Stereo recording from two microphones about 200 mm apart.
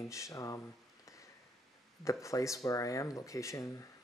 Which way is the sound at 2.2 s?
15° left (ahead or behind).